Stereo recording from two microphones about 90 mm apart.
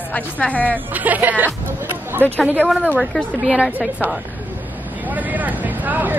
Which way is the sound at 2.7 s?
5° right (ahead or behind).